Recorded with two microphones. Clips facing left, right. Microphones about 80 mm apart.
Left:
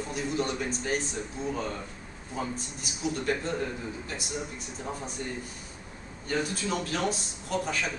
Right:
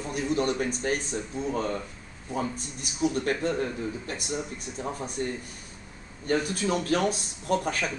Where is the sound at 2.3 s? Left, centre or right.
Right.